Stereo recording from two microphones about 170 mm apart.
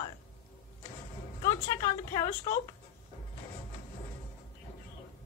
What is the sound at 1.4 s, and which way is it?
Speech, 20° left (ahead or behind).